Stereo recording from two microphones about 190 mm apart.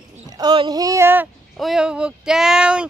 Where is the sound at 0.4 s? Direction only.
20° right (ahead or behind).